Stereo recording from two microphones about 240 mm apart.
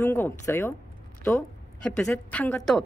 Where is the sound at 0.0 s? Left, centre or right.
Centre.